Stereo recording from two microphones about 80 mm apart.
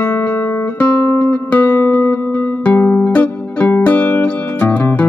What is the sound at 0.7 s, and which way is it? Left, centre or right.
Music, left.